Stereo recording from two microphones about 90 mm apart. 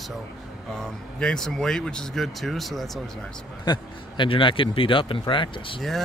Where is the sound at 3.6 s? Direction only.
60° left (ahead or behind).